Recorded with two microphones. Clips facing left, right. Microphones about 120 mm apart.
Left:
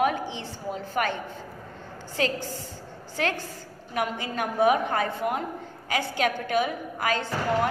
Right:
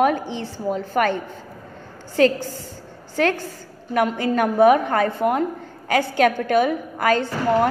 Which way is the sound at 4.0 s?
55° right (ahead or behind).